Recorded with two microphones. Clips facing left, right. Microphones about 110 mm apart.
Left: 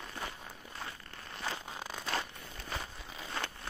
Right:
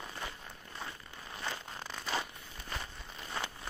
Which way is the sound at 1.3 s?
Centre (ahead or behind).